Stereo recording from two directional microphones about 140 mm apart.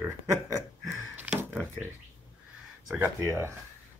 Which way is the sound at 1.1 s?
10° right (ahead or behind).